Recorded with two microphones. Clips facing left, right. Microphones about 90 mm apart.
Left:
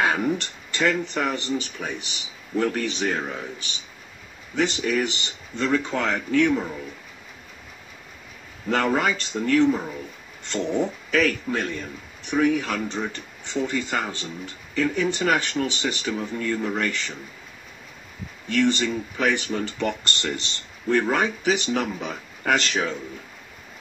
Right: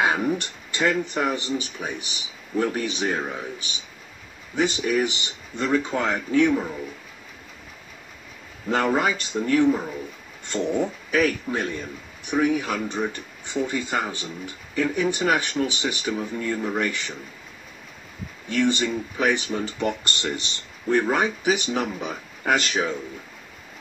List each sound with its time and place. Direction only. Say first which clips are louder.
0.0 s speech: even; 15° right (ahead or behind)
8.6 s speech: even; 15° right (ahead or behind)
18.5 s speech: left 1 dB; 15° right (ahead or behind)